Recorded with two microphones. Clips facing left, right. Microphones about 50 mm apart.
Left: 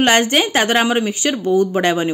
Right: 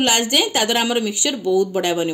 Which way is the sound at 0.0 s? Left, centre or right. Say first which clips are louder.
Left 4 dB; left.